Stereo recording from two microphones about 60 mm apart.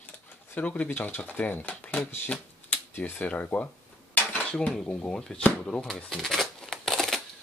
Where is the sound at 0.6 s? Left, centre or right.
Left.